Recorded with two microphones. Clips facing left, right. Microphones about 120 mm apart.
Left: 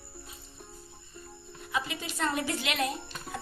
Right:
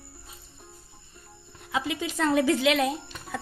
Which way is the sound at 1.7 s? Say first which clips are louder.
Right 5 dB; 90° right.